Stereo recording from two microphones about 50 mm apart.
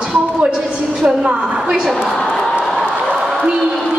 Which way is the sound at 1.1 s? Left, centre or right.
Centre.